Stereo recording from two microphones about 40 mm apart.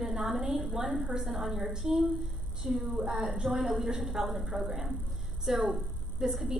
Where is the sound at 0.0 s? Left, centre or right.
Centre.